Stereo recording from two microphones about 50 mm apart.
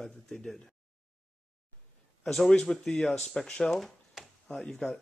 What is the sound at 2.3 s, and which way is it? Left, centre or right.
Speech, centre.